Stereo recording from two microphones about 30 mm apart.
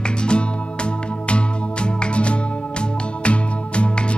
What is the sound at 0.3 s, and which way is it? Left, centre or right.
Music, left.